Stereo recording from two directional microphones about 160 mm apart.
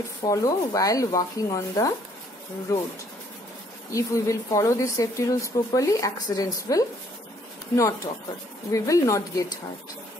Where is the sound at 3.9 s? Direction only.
20° left (ahead or behind).